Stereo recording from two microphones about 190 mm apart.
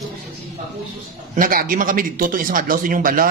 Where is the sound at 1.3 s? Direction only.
45° right (ahead or behind).